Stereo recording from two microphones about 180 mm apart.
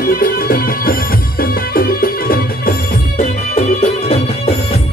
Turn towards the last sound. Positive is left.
turn(degrees=35)  # may be behind; listen again after turning